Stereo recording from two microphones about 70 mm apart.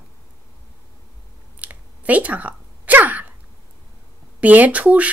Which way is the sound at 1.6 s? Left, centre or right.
Right.